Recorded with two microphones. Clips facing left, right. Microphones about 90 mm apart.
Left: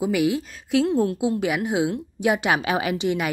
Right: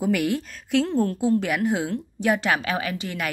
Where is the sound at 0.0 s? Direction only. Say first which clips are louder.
Left 1 dB; 5° left (ahead or behind).